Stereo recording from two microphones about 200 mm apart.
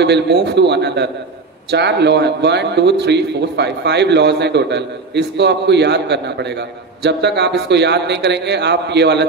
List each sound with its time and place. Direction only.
0.0 s a man's voice: 60° right (ahead or behind)